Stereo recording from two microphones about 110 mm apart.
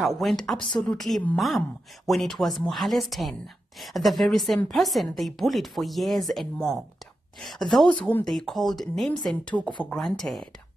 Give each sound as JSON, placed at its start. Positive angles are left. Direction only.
{"t": 0.0, "sound": "speech", "side_deg": 0}